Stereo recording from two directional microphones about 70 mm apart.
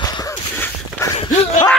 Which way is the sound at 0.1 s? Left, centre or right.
Left.